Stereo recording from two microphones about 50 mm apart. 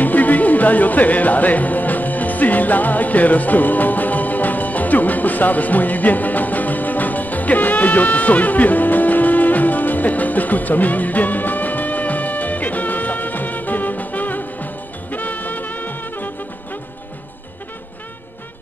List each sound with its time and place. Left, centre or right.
0.0 s music: left